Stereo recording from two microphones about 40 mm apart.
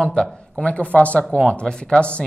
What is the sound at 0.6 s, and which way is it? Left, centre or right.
Speech, left.